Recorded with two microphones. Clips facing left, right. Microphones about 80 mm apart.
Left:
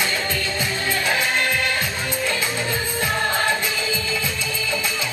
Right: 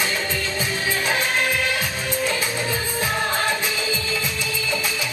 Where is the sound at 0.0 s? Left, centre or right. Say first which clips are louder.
Left 1 dB; centre.